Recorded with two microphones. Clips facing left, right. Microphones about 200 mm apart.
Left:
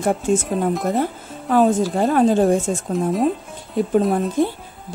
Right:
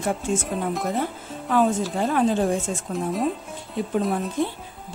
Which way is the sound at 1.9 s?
45° left (ahead or behind).